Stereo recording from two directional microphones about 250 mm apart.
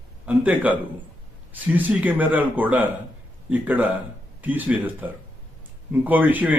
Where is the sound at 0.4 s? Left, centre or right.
Centre.